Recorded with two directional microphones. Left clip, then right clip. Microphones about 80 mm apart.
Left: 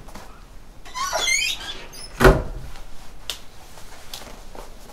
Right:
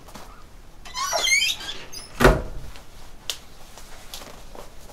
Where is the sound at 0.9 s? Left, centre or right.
Right.